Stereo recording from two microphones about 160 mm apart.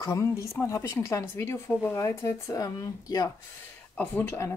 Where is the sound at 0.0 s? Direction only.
20° left (ahead or behind).